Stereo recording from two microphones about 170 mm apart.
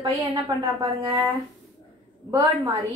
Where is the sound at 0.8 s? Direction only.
35° right (ahead or behind).